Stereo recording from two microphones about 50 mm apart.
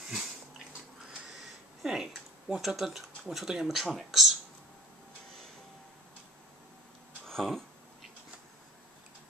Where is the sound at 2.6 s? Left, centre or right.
Centre.